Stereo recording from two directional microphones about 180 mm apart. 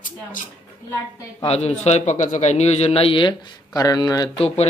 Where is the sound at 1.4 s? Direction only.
35° left (ahead or behind).